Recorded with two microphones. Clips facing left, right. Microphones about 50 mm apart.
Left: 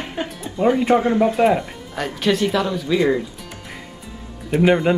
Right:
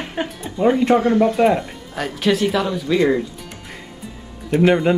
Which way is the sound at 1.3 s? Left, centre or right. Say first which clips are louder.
Right 1 dB; centre.